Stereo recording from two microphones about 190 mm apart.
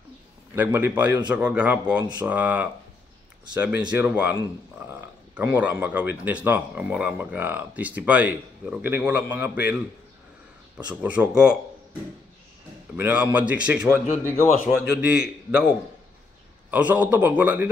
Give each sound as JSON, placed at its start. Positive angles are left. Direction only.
{"t": 0.7, "sound": "speech", "side_deg": -10}
{"t": 11.0, "sound": "a man's voice", "side_deg": -5}
{"t": 12.9, "sound": "a man's voice", "side_deg": -10}
{"t": 16.7, "sound": "speech", "side_deg": -10}